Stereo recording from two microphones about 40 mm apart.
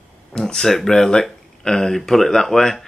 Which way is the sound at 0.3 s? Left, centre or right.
Left.